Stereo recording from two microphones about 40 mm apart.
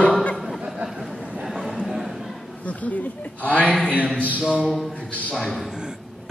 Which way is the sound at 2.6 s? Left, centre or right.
Left.